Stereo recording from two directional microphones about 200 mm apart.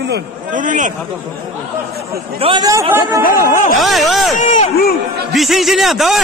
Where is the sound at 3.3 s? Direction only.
45° left (ahead or behind).